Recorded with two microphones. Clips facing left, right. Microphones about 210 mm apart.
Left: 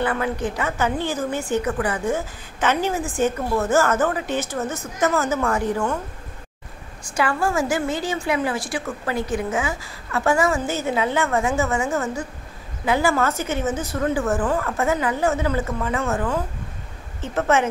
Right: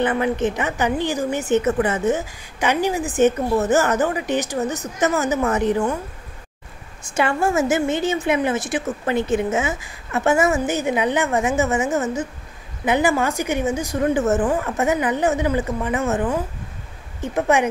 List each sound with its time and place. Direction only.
0.0 s a woman's voice: 20° right (ahead or behind)
7.1 s a woman's voice: 25° right (ahead or behind)